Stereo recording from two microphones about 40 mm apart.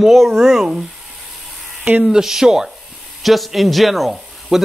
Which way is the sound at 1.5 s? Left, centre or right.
Centre.